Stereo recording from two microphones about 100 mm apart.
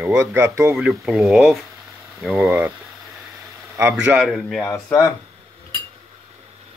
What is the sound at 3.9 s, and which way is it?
Speech, 5° right (ahead or behind).